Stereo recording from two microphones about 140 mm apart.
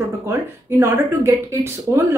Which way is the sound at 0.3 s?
15° right (ahead or behind).